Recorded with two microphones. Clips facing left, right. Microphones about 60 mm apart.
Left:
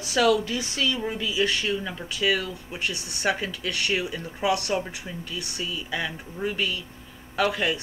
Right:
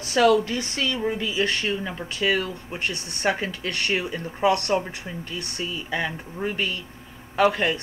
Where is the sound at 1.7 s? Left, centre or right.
Right.